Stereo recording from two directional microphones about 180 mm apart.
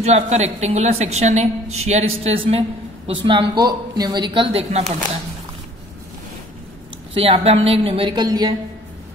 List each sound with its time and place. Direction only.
0.0 s a woman's voice: 40° right (ahead or behind)
7.2 s a woman's voice: 30° right (ahead or behind)